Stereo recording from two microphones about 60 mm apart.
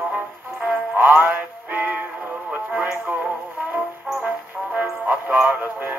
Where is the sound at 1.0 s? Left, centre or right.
Right.